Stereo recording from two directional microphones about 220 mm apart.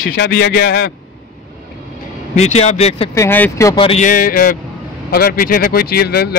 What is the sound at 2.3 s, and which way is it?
Speech, 30° left (ahead or behind).